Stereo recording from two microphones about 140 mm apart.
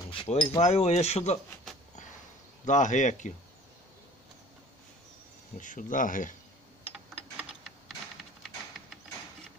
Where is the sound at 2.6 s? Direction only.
60° left (ahead or behind).